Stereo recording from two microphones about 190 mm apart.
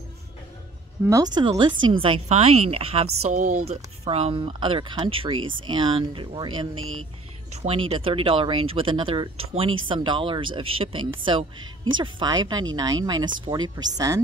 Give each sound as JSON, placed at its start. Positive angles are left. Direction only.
{"t": 1.0, "sound": "speech", "side_deg": -20}
{"t": 6.8, "sound": "music", "side_deg": -90}
{"t": 7.6, "sound": "speech", "side_deg": -30}